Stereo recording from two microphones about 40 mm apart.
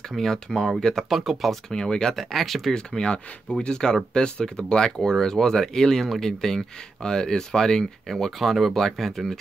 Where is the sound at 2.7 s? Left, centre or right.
Left.